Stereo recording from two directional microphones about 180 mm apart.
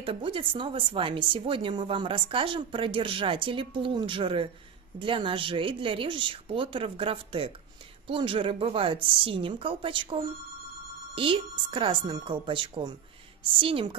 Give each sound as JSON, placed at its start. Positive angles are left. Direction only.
{"t": 0.0, "sound": "a woman's voice", "side_deg": -30}